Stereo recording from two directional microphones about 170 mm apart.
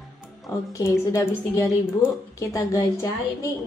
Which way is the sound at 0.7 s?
20° left (ahead or behind).